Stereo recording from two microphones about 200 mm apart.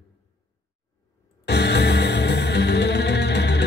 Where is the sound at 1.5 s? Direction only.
55° left (ahead or behind).